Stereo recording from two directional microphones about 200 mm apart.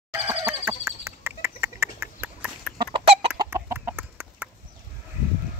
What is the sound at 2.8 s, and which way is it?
Chicken, 25° right (ahead or behind).